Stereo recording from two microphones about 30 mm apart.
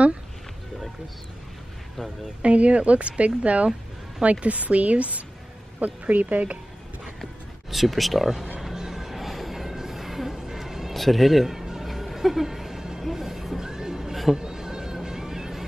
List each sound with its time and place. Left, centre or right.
2.4 s a woman's voice: right
5.8 s speech: right
7.7 s speech: centre
8.7 s music: centre
10.9 s a sound: centre
13.1 s neigh: centre